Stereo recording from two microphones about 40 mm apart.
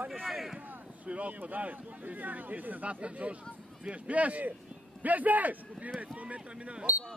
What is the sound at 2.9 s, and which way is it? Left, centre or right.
Speech, right.